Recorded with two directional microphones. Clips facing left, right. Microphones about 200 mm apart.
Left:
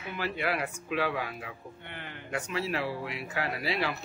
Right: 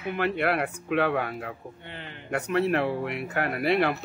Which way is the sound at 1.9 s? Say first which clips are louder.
Right 1 dB; 20° right (ahead or behind).